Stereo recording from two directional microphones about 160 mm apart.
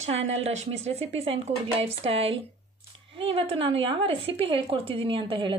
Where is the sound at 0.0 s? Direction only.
40° right (ahead or behind).